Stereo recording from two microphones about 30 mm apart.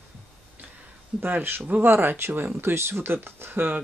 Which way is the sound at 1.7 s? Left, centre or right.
Right.